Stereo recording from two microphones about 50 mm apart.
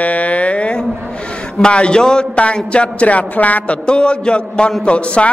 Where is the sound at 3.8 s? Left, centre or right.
Centre.